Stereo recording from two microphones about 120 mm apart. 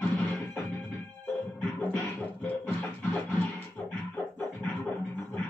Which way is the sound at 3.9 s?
15° left (ahead or behind).